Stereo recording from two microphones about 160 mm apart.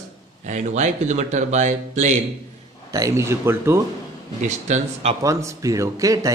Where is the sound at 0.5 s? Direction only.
45° right (ahead or behind).